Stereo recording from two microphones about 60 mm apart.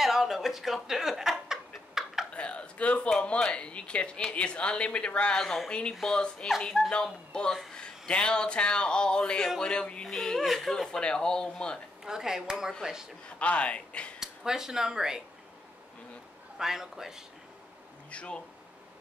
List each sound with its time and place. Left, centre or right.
0.0 s speech: centre
1.5 s a sound: centre
2.3 s a sound: centre
3.1 s speech: centre
5.4 s speech: centre
5.7 s speech: centre
10.0 s speech: centre
12.0 s speech: centre
13.4 s speech: left
14.2 s speech: centre
16.5 s speech: centre
18.1 s speech: centre